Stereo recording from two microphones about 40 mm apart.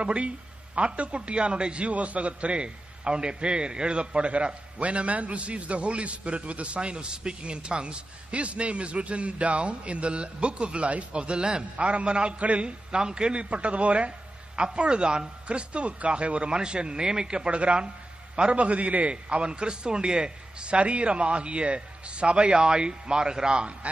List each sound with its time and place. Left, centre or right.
0.0 s a man's voice: right